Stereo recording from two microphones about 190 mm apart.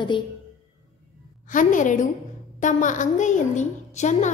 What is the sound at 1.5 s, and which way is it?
A woman's voice, 45° left (ahead or behind).